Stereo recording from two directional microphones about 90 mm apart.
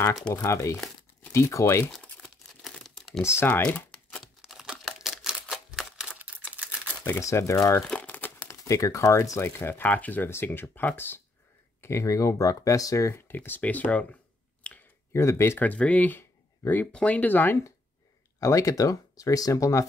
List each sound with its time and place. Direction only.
0.3 s speech: 35° left (ahead or behind)
1.9 s crumpling: 5° left (ahead or behind)
3.2 s speech: 30° left (ahead or behind)
4.2 s typewriter: centre (ahead or behind)
7.1 s speech: 30° left (ahead or behind)
8.0 s crumpling: 20° left (ahead or behind)
8.5 s speech: 35° left (ahead or behind)
11.8 s speech: 30° left (ahead or behind)
13.3 s speech: 20° left (ahead or behind)
14.7 s a sound: 10° left (ahead or behind)
15.1 s speech: 30° left (ahead or behind)
15.6 s speech: 15° left (ahead or behind)
16.8 s speech: 15° left (ahead or behind); by 19.8 s 35° left (ahead or behind)